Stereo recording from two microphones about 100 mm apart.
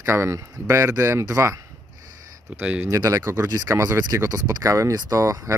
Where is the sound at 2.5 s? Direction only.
15° right (ahead or behind).